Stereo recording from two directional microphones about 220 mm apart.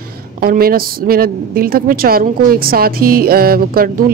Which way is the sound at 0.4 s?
40° right (ahead or behind).